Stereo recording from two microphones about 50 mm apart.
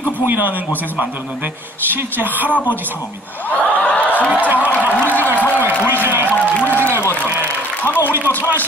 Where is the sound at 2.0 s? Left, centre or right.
Right.